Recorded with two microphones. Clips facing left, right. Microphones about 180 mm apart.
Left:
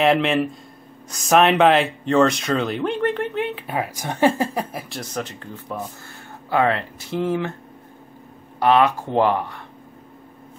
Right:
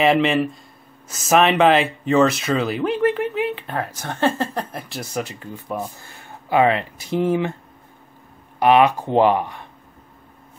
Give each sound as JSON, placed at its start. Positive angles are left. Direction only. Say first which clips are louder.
{"t": 0.0, "sound": "speech", "louder": "right 1 dB", "side_deg": 0}
{"t": 8.5, "sound": "speech", "louder": "right 2 dB", "side_deg": -15}